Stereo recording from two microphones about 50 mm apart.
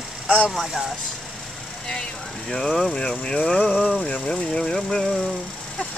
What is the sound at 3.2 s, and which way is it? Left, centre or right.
Speech, centre.